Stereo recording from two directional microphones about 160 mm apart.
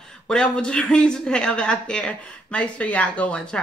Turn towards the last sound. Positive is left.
turn(degrees=5)  # may be behind; listen again after turning